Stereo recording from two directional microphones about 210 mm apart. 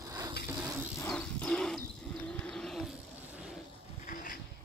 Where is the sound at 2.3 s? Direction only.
Centre (ahead or behind).